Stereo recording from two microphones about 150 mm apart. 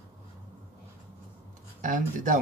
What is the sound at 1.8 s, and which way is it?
Speech, 60° right (ahead or behind).